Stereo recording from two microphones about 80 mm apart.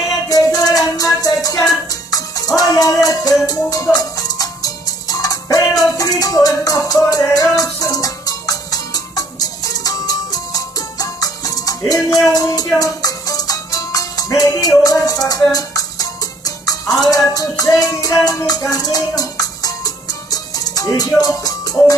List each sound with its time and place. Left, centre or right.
0.3 s music: left